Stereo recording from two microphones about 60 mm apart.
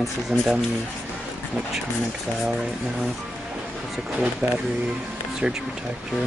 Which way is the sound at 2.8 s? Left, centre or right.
Centre.